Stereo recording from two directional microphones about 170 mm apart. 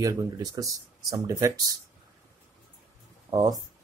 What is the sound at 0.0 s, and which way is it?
Speech, 20° right (ahead or behind).